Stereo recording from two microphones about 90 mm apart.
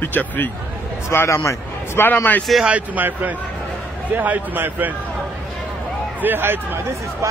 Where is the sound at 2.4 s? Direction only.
Centre (ahead or behind).